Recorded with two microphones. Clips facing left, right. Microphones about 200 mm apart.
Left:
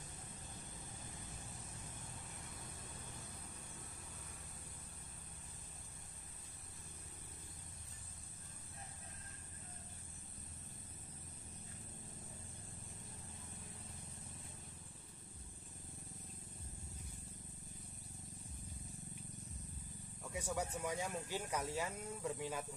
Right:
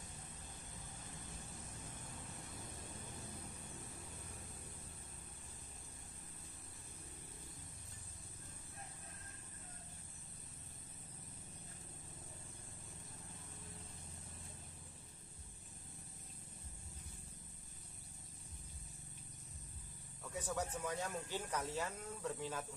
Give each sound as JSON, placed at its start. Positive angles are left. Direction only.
{"t": 20.3, "sound": "speech", "side_deg": 10}